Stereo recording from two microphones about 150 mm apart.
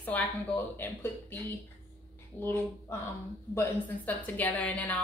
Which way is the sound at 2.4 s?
15° left (ahead or behind).